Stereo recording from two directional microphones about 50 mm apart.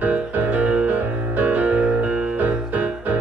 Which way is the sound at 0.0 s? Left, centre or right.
Right.